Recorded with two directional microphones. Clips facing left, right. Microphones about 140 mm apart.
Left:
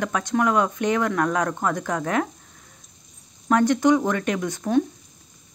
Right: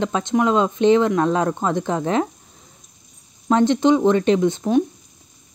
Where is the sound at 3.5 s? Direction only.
25° right (ahead or behind).